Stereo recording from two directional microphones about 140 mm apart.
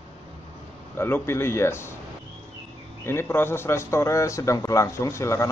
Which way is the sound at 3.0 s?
15° left (ahead or behind).